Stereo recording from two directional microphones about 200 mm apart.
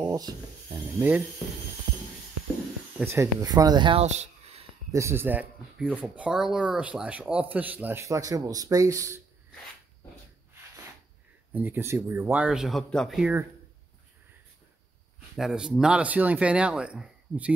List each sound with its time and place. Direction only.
0.0 s rub: 15° right (ahead or behind)
0.9 s speech: 10° right (ahead or behind)
3.0 s speech: 15° right (ahead or behind); by 4.6 s 30° right (ahead or behind)
4.9 s speech: 15° right (ahead or behind)
11.5 s speech: 10° right (ahead or behind)
15.3 s speech: centre (ahead or behind)